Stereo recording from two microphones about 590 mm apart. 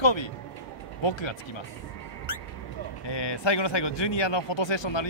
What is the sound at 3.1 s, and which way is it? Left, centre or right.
Speech, left.